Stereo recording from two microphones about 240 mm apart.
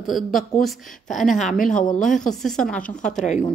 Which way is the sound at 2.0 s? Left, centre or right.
Centre.